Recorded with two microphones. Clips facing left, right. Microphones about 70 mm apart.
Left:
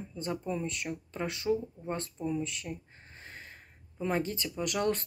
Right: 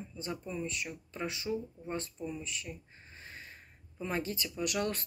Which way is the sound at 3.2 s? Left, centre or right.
Left.